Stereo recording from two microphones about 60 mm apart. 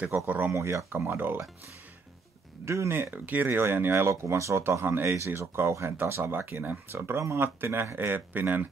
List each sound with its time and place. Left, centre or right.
0.3 s speech: right
0.6 s speech: right
0.9 s speech: right
2.6 s speech: right
2.9 s speech: right
4.6 s speech: right